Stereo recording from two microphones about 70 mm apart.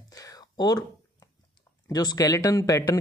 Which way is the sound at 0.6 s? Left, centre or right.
Left.